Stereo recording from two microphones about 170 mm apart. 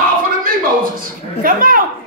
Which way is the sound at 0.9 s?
55° right (ahead or behind).